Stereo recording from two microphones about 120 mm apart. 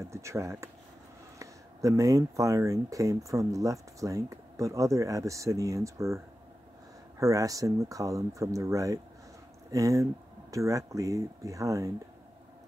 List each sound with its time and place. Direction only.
0.0 s speech: 25° right (ahead or behind)